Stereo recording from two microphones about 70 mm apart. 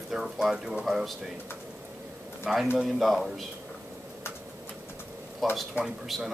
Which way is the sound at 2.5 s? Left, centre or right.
Centre.